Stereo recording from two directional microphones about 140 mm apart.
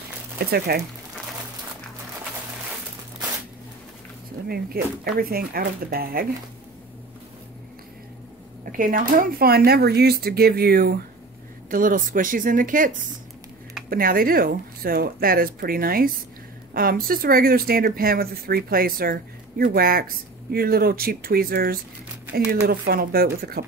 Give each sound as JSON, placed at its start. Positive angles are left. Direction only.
{"t": 0.7, "sound": "speech", "side_deg": -90}
{"t": 4.7, "sound": "speech", "side_deg": -90}
{"t": 8.7, "sound": "speech", "side_deg": -75}
{"t": 11.7, "sound": "speech", "side_deg": -75}
{"t": 13.8, "sound": "speech", "side_deg": -90}